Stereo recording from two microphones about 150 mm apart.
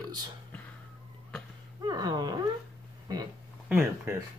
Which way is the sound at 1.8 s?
25° right (ahead or behind).